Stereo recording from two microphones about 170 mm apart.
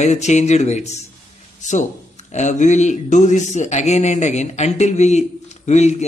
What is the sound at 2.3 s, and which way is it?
A man's voice, 45° left (ahead or behind).